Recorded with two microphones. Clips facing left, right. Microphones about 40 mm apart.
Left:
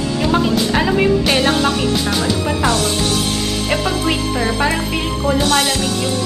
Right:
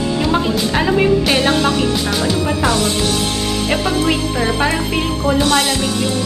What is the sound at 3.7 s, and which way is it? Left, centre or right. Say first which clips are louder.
Music: right 2 dB; centre.